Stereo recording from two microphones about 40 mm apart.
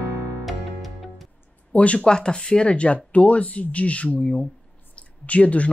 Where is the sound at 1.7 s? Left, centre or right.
Left.